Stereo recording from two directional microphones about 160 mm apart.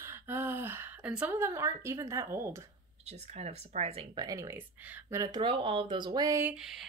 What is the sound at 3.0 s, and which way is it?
Speech, 40° right (ahead or behind).